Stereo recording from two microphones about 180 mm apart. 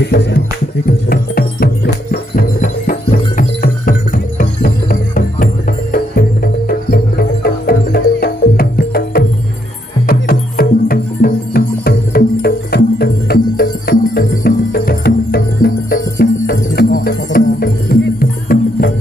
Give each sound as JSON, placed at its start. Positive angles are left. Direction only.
{"t": 0.0, "sound": "speech", "side_deg": 65}
{"t": 0.8, "sound": "music", "side_deg": 60}